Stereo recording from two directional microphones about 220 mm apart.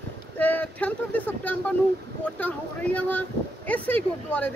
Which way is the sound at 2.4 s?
5° left (ahead or behind).